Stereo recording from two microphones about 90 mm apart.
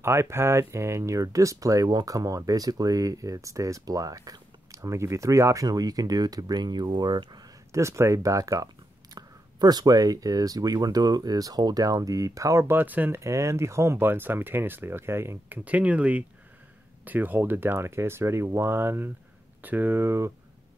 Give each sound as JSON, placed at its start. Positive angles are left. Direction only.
{"t": 0.0, "sound": "speech", "side_deg": -30}
{"t": 7.7, "sound": "speech", "side_deg": -35}
{"t": 12.7, "sound": "speech", "side_deg": -20}
{"t": 13.2, "sound": "speech", "side_deg": -35}
{"t": 15.6, "sound": "speech", "side_deg": -15}